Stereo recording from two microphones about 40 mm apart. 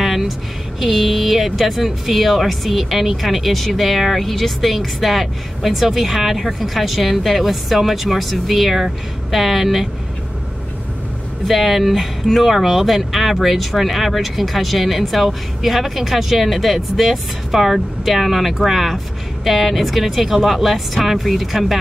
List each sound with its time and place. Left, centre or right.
0.0 s a sound: centre
0.7 s speech: centre
11.4 s speech: centre